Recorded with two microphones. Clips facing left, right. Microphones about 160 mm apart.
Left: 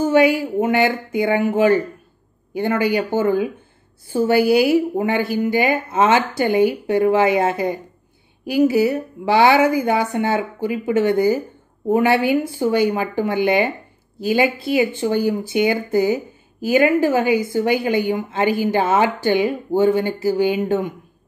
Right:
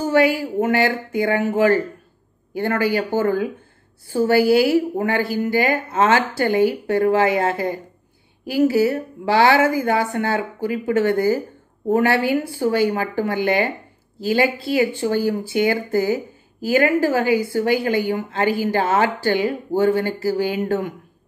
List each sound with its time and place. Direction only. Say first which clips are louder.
0.0 s a woman's voice: left 2 dB; 20° left (ahead or behind)